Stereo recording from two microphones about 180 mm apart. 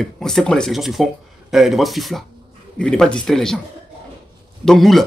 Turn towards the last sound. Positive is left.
turn(degrees=0)  # may be behind; listen again after turning